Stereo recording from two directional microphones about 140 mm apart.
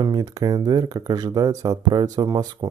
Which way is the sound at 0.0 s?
25° right (ahead or behind).